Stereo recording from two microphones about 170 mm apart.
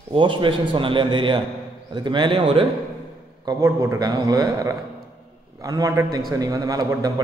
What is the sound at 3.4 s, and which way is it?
A man's voice, 20° right (ahead or behind).